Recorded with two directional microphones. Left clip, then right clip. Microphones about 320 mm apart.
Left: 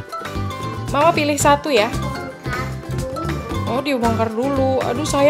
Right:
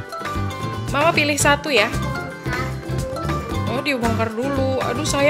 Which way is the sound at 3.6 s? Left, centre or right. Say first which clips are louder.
Left 3 dB; centre.